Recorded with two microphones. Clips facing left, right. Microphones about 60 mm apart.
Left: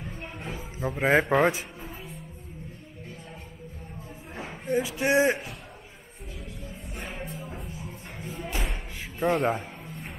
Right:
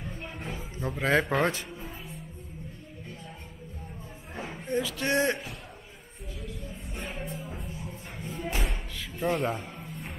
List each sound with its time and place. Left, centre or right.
0.0 s music: centre
0.9 s speech: centre
1.3 s music: centre
4.4 s a sound: centre
4.8 s speech: centre
6.9 s music: centre